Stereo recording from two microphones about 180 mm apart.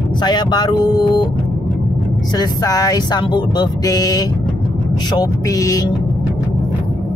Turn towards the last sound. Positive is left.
turn(degrees=20)  # may be behind; listen again after turning